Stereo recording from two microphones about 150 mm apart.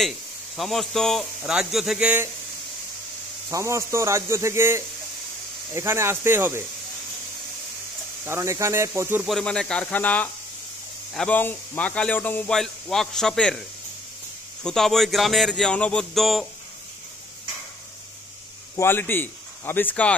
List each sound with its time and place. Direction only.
0.6 s speech: centre (ahead or behind)
3.4 s a man's voice: 20° right (ahead or behind)
8.3 s speech: 20° right (ahead or behind)
9.2 s speech: 5° left (ahead or behind)
14.6 s speech: 5° left (ahead or behind)
18.8 s speech: 15° left (ahead or behind)